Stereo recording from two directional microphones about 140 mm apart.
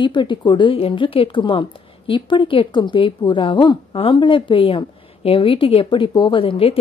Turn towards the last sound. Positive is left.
turn(degrees=40)  # may be behind; listen again after turning